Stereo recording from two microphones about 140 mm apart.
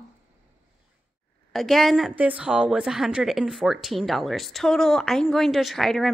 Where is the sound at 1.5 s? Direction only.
Centre (ahead or behind).